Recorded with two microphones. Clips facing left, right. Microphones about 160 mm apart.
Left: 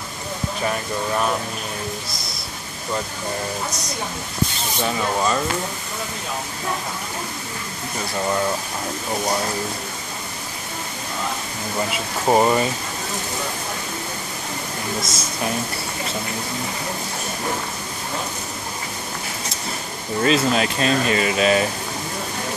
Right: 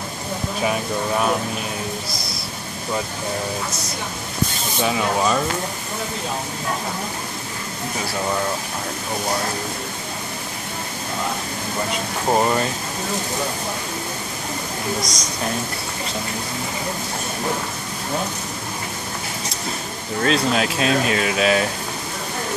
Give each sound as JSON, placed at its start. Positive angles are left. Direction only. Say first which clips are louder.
{"t": 4.8, "sound": "speech", "louder": "right 2 dB", "side_deg": -5}
{"t": 12.3, "sound": "speech", "louder": "left 2 dB", "side_deg": 10}
{"t": 15.0, "sound": "speech", "louder": "right 1 dB", "side_deg": 5}
{"t": 20.2, "sound": "speech", "louder": "left 1 dB", "side_deg": 0}